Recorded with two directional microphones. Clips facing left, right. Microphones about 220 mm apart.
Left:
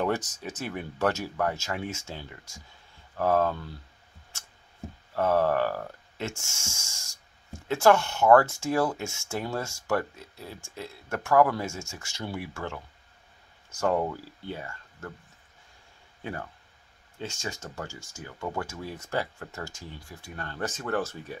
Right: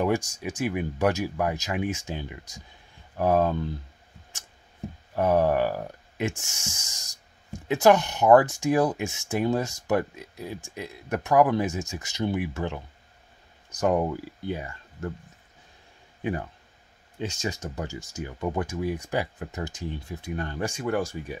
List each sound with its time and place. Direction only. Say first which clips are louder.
0.0 s speech: right 3 dB; 10° right (ahead or behind)
5.1 s speech: right 2 dB; 15° right (ahead or behind)
16.2 s speech: right 7 dB; 15° right (ahead or behind)